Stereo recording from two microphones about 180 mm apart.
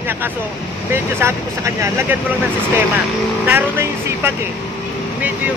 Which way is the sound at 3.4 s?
10° right (ahead or behind).